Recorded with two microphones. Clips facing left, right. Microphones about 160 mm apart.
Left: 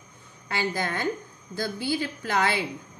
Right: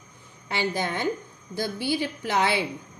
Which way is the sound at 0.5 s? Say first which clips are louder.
Right 1 dB; 20° right (ahead or behind).